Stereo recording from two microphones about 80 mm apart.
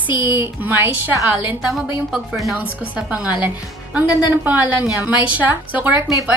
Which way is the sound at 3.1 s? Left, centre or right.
Centre.